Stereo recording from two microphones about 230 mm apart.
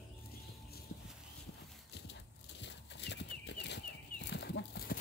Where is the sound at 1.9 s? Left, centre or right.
Left.